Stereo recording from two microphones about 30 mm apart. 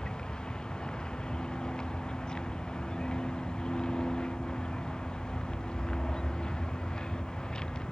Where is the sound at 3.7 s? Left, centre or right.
Left.